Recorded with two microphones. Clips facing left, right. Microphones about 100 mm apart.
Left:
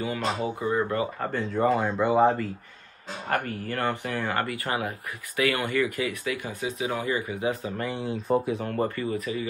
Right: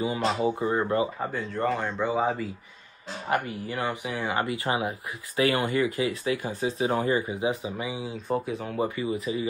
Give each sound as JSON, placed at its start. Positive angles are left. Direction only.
{"t": 0.0, "sound": "speech", "side_deg": -20}
{"t": 1.2, "sound": "speech", "side_deg": 0}
{"t": 3.6, "sound": "speech", "side_deg": -10}
{"t": 7.7, "sound": "speech", "side_deg": -5}